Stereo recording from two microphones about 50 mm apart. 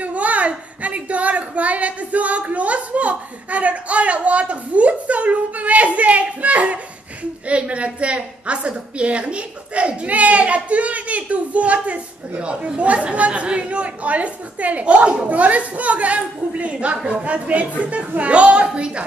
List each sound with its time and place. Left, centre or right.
0.0 s a woman's voice: right